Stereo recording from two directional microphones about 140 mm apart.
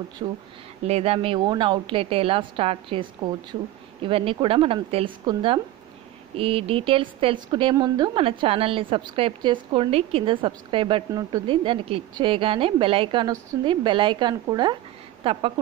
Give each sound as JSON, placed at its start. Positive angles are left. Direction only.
{"t": 0.2, "sound": "a woman's voice", "side_deg": -35}
{"t": 0.8, "sound": "a woman's voice", "side_deg": -45}
{"t": 11.1, "sound": "speech", "side_deg": -25}
{"t": 11.4, "sound": "a woman's voice", "side_deg": -40}